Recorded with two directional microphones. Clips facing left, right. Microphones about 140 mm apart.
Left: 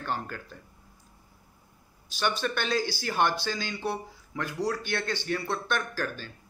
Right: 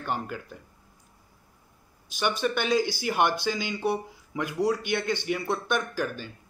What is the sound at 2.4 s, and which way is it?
A man's voice, 15° right (ahead or behind).